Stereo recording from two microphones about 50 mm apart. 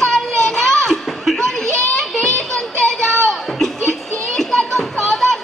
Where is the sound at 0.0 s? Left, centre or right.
Centre.